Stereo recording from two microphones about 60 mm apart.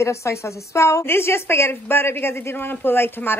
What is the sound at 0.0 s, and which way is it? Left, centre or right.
A woman's voice, left.